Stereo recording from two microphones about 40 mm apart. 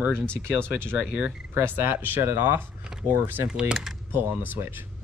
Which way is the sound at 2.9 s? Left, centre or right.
Centre.